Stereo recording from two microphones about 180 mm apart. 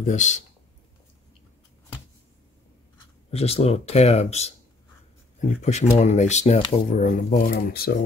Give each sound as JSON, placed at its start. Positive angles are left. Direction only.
{"t": 0.0, "sound": "speech", "side_deg": 40}
{"t": 3.3, "sound": "speech", "side_deg": 35}
{"t": 5.6, "sound": "speech", "side_deg": 40}